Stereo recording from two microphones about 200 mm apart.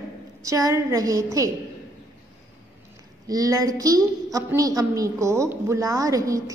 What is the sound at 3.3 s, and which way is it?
A woman's voice, 15° right (ahead or behind).